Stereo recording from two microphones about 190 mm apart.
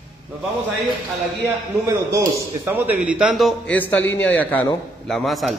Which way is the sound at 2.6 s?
10° right (ahead or behind).